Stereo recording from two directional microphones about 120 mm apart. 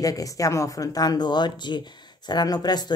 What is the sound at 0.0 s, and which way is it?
Speech, 30° left (ahead or behind).